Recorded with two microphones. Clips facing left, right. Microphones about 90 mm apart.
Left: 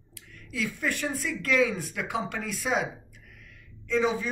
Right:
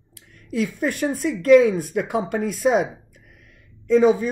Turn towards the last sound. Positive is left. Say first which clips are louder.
# right 10 dB
turn(degrees=-50)  # may be behind; listen again after turning